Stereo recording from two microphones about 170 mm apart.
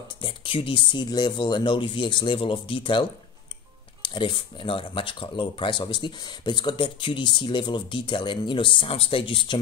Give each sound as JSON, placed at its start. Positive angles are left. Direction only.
{"t": 0.2, "sound": "speech", "side_deg": 30}